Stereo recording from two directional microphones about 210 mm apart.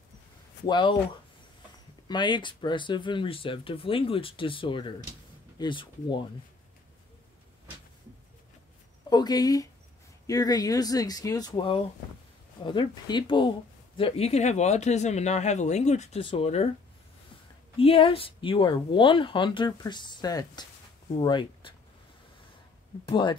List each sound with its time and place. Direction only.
0.7 s speech: 20° left (ahead or behind)
2.0 s speech: 20° left (ahead or behind)
9.1 s speech: 20° left (ahead or behind)
17.7 s speech: 25° left (ahead or behind)
23.0 s speech: 20° left (ahead or behind)